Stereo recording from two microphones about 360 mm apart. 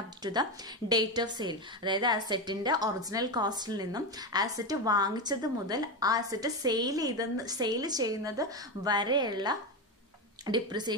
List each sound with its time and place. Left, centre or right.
0.2 s a woman's voice: centre